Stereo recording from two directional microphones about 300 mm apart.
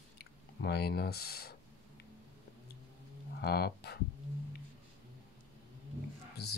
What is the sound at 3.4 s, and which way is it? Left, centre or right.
Speech, left.